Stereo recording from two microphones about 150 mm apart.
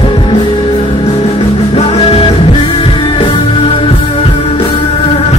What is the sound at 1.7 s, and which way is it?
Music, 40° left (ahead or behind).